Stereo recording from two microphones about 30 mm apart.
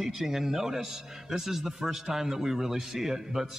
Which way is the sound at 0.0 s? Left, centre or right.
Centre.